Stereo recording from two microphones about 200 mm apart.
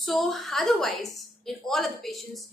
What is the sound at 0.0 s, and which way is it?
A woman's voice, centre (ahead or behind).